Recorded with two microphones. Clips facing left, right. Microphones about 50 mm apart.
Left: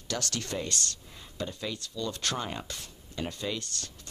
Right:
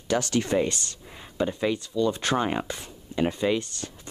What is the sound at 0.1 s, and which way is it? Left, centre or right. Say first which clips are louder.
Speech: right 10 dB; centre.